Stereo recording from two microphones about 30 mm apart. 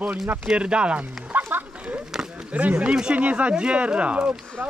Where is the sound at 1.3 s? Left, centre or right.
Right.